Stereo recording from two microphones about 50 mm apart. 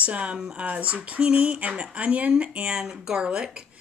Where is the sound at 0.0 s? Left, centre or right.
Right.